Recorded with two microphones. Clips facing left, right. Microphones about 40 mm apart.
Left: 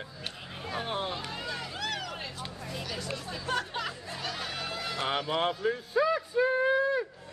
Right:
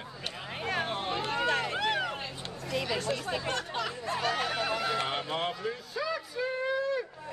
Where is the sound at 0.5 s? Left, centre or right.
Right.